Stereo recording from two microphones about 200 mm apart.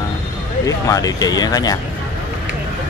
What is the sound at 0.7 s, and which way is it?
Speech, 15° left (ahead or behind).